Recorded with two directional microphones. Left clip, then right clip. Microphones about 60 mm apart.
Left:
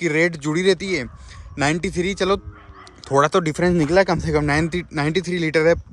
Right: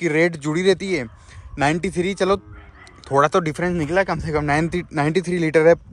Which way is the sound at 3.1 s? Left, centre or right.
Left.